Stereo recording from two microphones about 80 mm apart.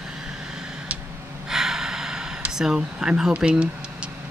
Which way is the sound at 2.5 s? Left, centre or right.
Centre.